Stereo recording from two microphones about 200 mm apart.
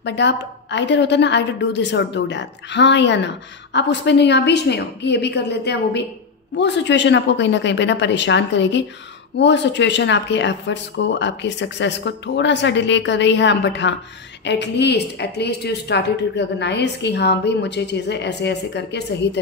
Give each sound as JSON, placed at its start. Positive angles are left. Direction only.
{"t": 0.0, "sound": "a woman's voice", "side_deg": 60}